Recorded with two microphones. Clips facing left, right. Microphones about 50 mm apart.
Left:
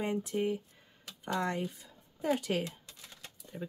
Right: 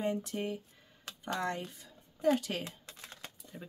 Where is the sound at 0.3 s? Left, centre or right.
Centre.